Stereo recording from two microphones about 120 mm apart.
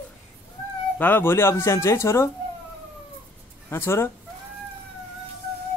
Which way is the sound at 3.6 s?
20° left (ahead or behind).